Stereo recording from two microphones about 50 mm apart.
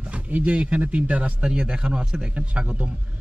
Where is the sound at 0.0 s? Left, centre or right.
Right.